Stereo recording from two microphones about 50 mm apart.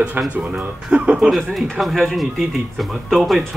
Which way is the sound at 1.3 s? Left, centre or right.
Centre.